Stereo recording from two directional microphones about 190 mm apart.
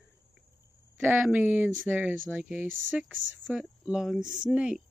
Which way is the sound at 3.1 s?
85° right.